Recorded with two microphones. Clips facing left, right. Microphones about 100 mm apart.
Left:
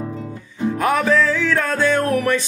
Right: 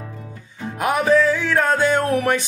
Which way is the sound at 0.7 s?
15° right (ahead or behind).